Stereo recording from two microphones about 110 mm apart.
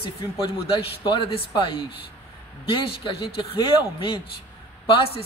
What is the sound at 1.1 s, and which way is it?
A man's voice, 50° left (ahead or behind).